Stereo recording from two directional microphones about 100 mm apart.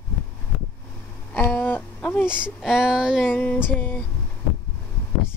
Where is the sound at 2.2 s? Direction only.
10° right (ahead or behind).